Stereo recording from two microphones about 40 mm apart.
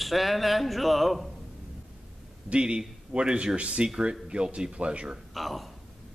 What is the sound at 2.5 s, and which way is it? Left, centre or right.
Speech, right.